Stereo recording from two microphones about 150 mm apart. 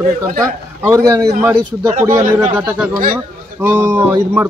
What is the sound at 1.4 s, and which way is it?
Speech, 10° right (ahead or behind).